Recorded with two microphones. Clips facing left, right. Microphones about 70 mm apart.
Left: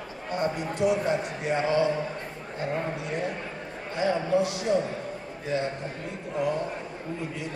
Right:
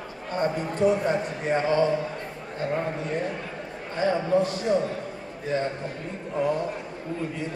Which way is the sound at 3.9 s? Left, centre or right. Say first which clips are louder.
Right 2 dB; right.